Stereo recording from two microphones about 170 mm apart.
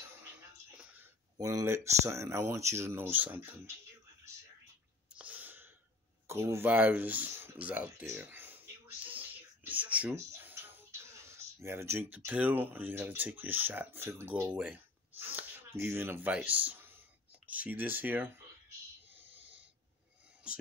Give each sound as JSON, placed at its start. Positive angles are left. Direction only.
{"t": 1.4, "sound": "speech", "side_deg": -20}
{"t": 5.1, "sound": "sneeze", "side_deg": -10}
{"t": 6.2, "sound": "speech", "side_deg": -15}
{"t": 9.0, "sound": "a sound", "side_deg": -10}